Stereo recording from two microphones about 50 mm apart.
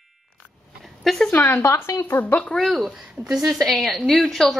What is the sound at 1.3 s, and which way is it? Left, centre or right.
Speech, left.